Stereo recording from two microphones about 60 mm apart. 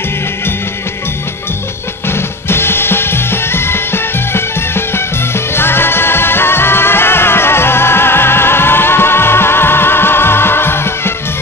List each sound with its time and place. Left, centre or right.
2.5 s music: left